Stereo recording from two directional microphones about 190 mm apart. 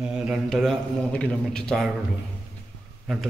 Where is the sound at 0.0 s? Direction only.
5° right (ahead or behind).